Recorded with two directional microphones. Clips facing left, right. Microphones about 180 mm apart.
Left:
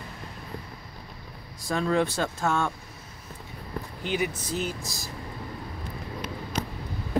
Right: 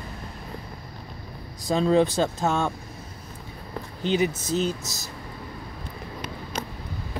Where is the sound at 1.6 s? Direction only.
20° right (ahead or behind).